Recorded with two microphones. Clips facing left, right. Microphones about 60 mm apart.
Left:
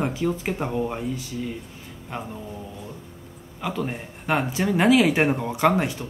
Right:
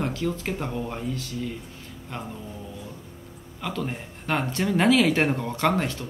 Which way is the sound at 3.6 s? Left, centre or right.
Centre.